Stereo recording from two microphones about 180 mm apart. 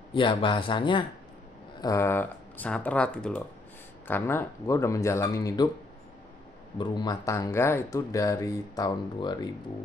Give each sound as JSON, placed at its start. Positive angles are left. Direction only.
{"t": 0.1, "sound": "speech", "side_deg": 25}
{"t": 1.8, "sound": "speech", "side_deg": 15}
{"t": 6.8, "sound": "speech", "side_deg": 25}